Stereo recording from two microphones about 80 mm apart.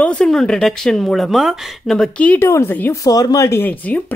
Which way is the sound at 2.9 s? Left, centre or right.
Left.